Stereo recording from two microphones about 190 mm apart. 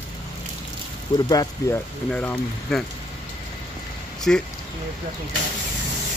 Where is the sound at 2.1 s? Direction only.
5° left (ahead or behind).